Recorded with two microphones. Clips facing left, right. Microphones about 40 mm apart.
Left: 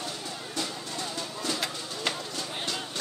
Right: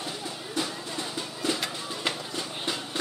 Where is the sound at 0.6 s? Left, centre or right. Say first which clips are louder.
Right 3 dB; centre.